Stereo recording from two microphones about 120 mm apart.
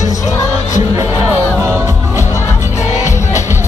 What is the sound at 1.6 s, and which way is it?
Music, 20° right (ahead or behind).